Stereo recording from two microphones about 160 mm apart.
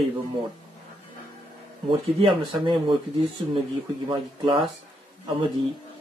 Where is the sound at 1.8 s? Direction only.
30° right (ahead or behind).